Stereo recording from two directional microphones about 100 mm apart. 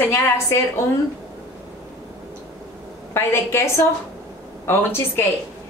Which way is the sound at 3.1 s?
25° left (ahead or behind).